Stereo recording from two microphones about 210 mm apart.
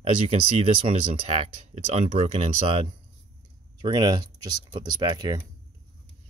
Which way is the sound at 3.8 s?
20° right (ahead or behind).